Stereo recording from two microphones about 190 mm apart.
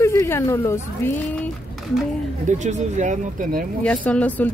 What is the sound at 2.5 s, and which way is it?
Speech, 40° right (ahead or behind).